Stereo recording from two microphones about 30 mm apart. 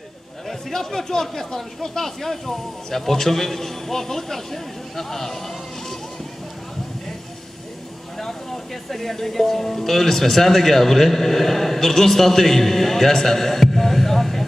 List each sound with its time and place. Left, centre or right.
0.7 s speech: centre
8.2 s speech: centre